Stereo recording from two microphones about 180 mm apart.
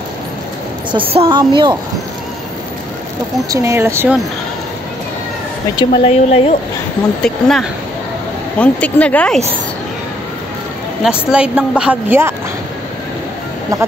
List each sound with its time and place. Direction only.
0.9 s a woman's voice: 30° right (ahead or behind)
3.4 s speech: 15° right (ahead or behind)
5.8 s speech: 35° left (ahead or behind)
7.2 s a woman's voice: 5° left (ahead or behind)
11.1 s a woman's voice: 5° right (ahead or behind)